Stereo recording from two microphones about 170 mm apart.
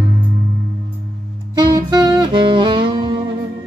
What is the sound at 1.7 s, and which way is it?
Saxophone, 25° right (ahead or behind).